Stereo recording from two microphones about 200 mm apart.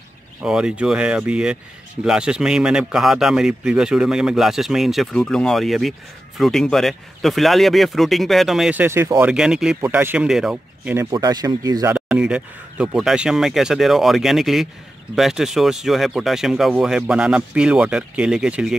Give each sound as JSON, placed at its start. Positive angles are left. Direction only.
{"t": 0.4, "sound": "a man's voice", "side_deg": -5}
{"t": 11.1, "sound": "speech", "side_deg": -20}
{"t": 11.9, "sound": "a man's voice", "side_deg": -5}